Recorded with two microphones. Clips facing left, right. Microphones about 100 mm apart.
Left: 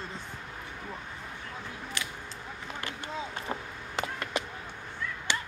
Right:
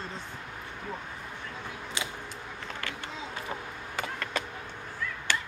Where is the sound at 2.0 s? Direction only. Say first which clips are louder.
Right 3 dB; 20° right (ahead or behind).